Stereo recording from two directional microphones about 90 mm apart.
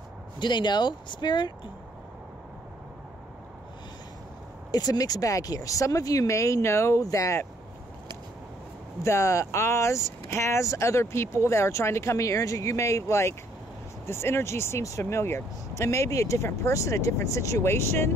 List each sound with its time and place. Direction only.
0.4 s speech: 60° left (ahead or behind)
4.6 s speech: 45° left (ahead or behind)
9.0 s speech: 35° left (ahead or behind)